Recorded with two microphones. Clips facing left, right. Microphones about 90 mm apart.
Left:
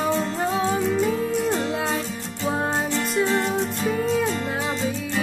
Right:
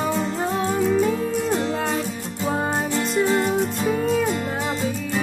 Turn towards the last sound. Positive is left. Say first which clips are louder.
# right 2 dB
turn(degrees=-5)  # may be behind; listen again after turning